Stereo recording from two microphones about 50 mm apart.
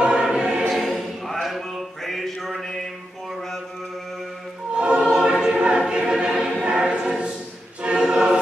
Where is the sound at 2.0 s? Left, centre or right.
Centre.